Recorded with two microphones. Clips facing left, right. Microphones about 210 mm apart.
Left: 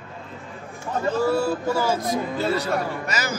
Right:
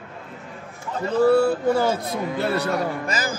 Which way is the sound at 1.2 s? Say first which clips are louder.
Right 8 dB; 60° right (ahead or behind).